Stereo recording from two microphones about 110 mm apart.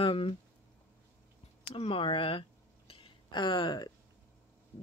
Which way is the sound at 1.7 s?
55° left (ahead or behind).